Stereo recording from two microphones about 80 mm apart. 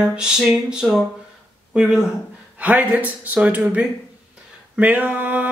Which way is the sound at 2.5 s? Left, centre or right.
Centre.